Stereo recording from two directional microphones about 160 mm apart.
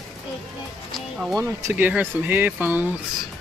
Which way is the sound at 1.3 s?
20° right (ahead or behind).